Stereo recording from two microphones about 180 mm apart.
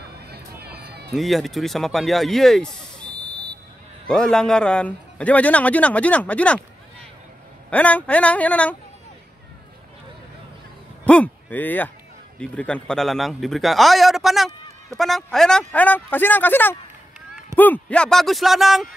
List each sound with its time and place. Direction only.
0.3 s run: 60° right (ahead or behind)
1.1 s a man's voice: centre (ahead or behind)
3.1 s vehicle: 25° right (ahead or behind)
4.1 s a man's voice: 5° left (ahead or behind)
7.7 s a man's voice: 10° left (ahead or behind)
11.1 s a man's voice: 10° left (ahead or behind)